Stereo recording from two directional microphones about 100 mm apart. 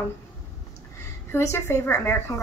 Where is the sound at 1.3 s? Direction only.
25° left (ahead or behind).